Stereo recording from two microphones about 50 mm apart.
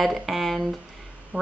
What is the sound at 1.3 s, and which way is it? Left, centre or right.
Speech, right.